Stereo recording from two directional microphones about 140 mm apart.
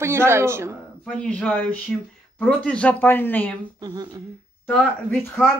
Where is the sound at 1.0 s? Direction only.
10° left (ahead or behind).